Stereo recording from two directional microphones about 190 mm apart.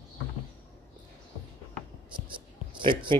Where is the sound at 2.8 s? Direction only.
25° right (ahead or behind).